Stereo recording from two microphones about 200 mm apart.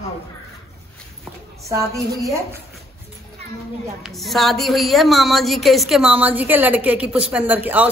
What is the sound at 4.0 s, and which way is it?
A woman's voice, centre (ahead or behind).